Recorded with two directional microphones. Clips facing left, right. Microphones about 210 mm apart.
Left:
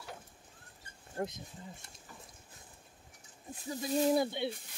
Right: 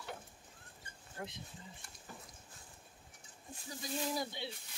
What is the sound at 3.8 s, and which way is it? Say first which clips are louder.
Speech: left 10 dB; 40° left (ahead or behind).